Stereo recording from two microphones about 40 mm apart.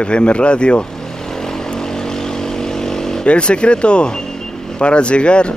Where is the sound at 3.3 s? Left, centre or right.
Left.